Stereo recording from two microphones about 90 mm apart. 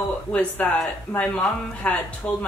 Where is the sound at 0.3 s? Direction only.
15° left (ahead or behind).